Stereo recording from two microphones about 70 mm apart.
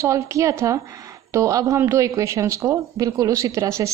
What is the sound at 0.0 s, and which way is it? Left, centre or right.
Speech, right.